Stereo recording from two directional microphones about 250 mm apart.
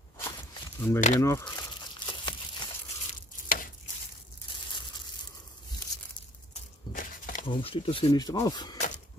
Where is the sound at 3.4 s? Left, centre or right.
Left.